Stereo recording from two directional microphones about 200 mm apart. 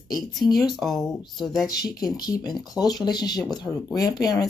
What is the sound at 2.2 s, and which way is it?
A woman's voice, 20° left (ahead or behind).